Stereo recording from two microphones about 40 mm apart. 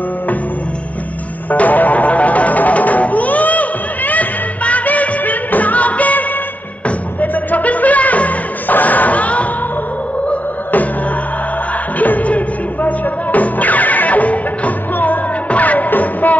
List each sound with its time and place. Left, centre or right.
1.5 s music: left
12.0 s music: left